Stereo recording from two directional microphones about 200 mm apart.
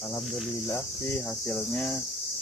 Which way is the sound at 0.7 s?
10° left (ahead or behind).